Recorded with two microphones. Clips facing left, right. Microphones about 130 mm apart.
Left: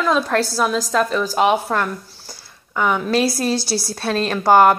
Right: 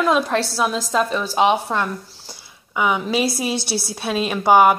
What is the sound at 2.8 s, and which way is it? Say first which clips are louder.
A woman's voice: left 2 dB; 5° right (ahead or behind).